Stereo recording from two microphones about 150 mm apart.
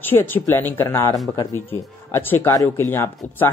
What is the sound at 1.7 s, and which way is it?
Speech, 15° left (ahead or behind).